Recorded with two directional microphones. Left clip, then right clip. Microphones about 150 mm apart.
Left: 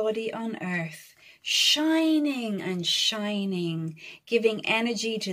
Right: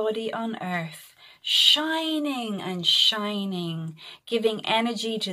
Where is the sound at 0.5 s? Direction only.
10° left (ahead or behind).